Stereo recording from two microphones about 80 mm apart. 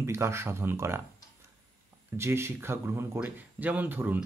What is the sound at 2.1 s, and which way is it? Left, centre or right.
Speech, right.